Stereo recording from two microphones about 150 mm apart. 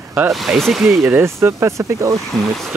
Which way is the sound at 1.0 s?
15° right (ahead or behind).